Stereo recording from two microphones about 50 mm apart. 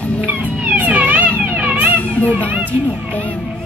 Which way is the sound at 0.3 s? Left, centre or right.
Right.